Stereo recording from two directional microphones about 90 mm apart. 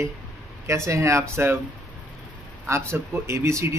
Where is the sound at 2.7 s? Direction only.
30° right (ahead or behind).